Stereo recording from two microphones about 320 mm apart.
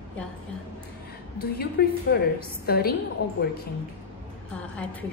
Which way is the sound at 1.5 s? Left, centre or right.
Left.